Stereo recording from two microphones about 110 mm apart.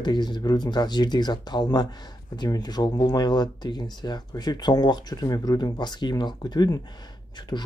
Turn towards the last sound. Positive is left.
turn(degrees=40)  # may be behind; listen again after turning